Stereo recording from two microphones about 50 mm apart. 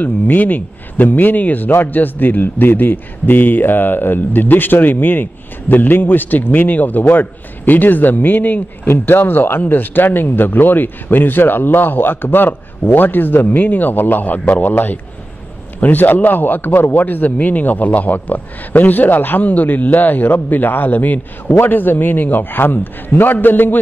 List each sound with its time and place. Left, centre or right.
0.0 s a man's voice: left